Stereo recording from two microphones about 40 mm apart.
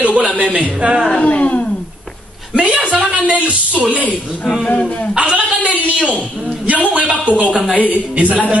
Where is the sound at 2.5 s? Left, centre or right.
Right.